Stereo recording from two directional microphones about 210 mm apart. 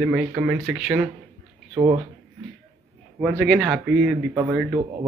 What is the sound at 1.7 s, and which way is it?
Speech, 20° right (ahead or behind).